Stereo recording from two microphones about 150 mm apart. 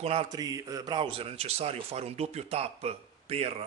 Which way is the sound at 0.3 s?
25° right (ahead or behind).